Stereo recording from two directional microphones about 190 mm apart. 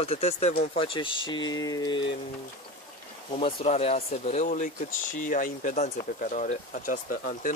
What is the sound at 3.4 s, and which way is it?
Speech, 35° left (ahead or behind).